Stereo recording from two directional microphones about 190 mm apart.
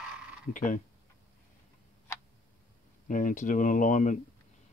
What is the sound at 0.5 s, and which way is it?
Speech, 45° left (ahead or behind).